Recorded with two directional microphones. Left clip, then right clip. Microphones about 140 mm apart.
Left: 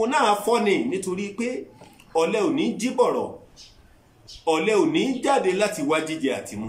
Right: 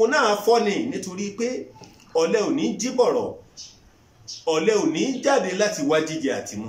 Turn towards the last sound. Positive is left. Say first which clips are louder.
# even
turn(degrees=25)  # may be behind; listen again after turning